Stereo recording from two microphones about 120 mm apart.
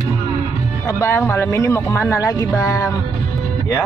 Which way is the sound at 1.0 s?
20° left (ahead or behind).